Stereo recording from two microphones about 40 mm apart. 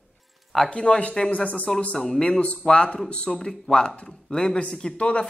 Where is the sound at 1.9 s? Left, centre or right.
Centre.